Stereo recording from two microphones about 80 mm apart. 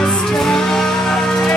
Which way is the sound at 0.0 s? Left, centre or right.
Centre.